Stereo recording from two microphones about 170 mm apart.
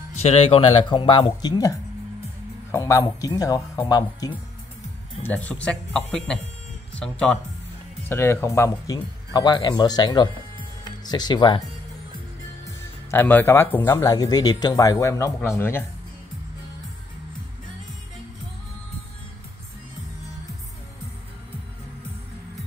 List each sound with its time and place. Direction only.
0.1 s speech: 35° left (ahead or behind)
5.2 s speech: 10° left (ahead or behind); by 11.6 s 25° left (ahead or behind)
13.1 s speech: 10° left (ahead or behind)